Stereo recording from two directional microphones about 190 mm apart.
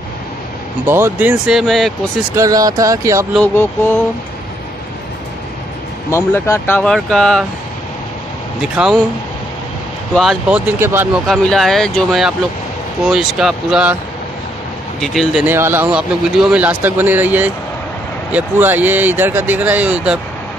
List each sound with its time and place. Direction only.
0.8 s speech: 10° right (ahead or behind)
2.3 s speech: 20° right (ahead or behind)
3.5 s speech: 10° left (ahead or behind)
6.0 s speech: 15° left (ahead or behind)
6.8 s speech: 5° left (ahead or behind)
8.5 s speech: 5° right (ahead or behind)
10.1 s speech: 5° right (ahead or behind)
11.2 s speech: centre (ahead or behind)
15.0 s speech: centre (ahead or behind)
15.4 s speech: 10° right (ahead or behind)